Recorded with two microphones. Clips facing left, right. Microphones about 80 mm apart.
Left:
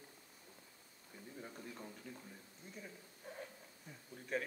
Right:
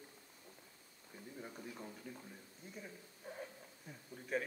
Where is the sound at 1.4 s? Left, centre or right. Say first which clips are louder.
Right 1 dB; centre.